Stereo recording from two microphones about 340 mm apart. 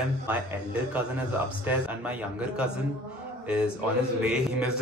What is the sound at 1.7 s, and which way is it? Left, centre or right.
Speech, centre.